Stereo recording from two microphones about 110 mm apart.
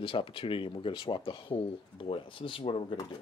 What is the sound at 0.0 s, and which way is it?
Speech, 55° left (ahead or behind).